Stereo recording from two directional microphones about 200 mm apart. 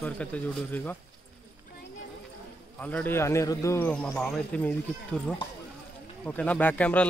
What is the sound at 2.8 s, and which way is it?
A man's voice, 10° left (ahead or behind).